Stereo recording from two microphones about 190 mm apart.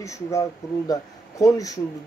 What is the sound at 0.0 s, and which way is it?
Speech, 15° left (ahead or behind).